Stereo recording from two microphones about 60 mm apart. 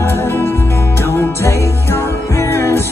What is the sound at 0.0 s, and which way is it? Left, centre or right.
Music, left.